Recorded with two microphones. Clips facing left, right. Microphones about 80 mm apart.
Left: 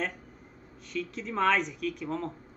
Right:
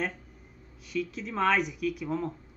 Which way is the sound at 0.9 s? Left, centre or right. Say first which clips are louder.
Right 1 dB; centre.